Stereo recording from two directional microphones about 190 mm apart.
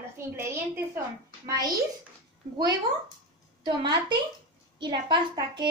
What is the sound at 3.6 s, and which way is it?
A woman's voice, 25° right (ahead or behind).